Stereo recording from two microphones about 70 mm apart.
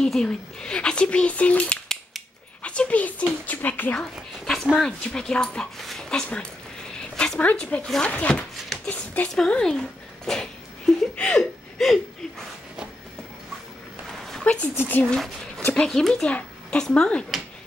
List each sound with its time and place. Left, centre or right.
0.0 s speech: centre; by 3.9 s left
4.7 s speech: centre
7.8 s speech: centre
8.1 s speech: centre
9.3 s speech: centre
14.4 s speech: centre
14.8 s speech: left
15.1 s speech: centre